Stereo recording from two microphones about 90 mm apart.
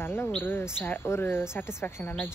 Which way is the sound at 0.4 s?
25° left (ahead or behind).